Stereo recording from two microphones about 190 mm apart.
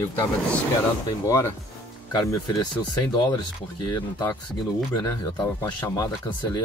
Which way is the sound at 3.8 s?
20° left (ahead or behind).